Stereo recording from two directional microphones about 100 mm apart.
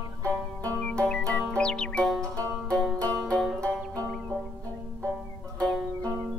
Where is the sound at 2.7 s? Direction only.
5° left (ahead or behind).